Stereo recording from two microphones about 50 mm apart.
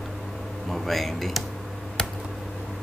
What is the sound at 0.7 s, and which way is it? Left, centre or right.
Speech, centre.